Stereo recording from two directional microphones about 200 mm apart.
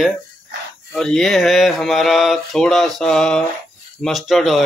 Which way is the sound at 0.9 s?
Centre (ahead or behind).